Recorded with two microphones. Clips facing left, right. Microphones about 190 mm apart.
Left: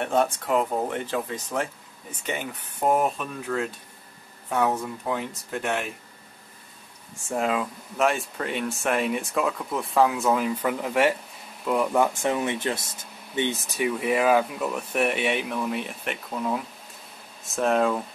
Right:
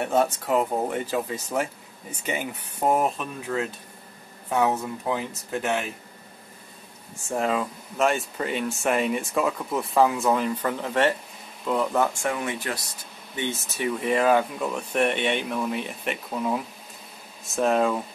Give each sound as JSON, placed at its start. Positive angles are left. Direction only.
{"t": 0.0, "sound": "speech", "side_deg": -5}
{"t": 7.2, "sound": "speech", "side_deg": 0}